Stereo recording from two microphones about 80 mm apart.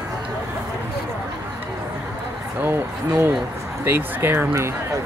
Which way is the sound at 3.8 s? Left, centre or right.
Right.